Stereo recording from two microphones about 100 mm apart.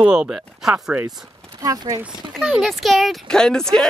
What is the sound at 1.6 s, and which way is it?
Speech, 35° right (ahead or behind).